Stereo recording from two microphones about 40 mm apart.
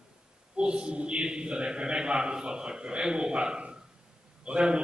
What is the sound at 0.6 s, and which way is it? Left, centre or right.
A man's voice, right.